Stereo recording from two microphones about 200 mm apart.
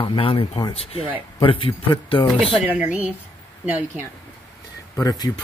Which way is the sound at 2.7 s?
5° right (ahead or behind).